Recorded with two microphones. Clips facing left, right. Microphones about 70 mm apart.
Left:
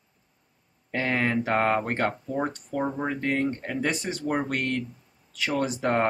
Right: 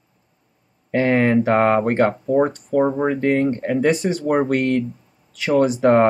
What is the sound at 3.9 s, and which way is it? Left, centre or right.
Speech, centre.